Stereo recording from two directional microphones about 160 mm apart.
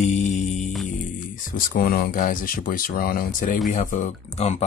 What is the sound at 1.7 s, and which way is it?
Speech, 70° left (ahead or behind).